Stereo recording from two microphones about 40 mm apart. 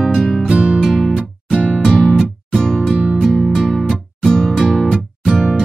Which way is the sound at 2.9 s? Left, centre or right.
Right.